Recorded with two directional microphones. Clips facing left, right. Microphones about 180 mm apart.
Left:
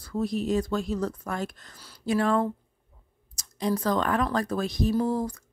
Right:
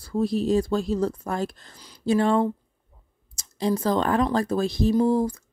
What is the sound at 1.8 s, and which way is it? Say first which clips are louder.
Speech: right 5 dB; 15° right (ahead or behind).